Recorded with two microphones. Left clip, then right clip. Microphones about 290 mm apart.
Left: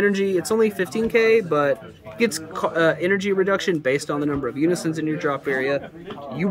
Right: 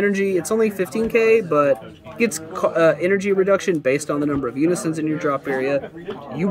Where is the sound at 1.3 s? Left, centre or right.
Centre.